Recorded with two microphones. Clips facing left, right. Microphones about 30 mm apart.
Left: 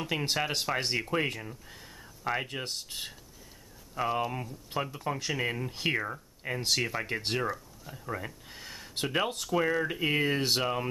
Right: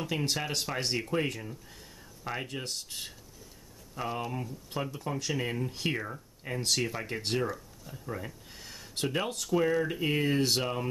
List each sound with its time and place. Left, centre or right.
0.0 s speech: centre